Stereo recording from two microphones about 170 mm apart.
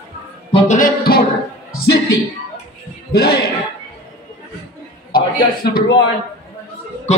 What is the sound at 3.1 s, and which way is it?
Speech, 65° left (ahead or behind).